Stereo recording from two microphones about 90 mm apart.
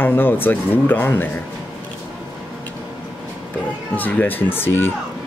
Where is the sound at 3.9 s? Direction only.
20° left (ahead or behind).